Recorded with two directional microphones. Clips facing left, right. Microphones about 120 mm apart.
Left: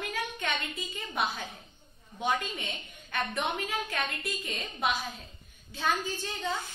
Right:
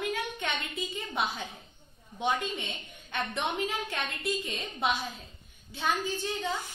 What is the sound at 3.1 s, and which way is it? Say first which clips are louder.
A woman's voice: even; 20° right (ahead or behind).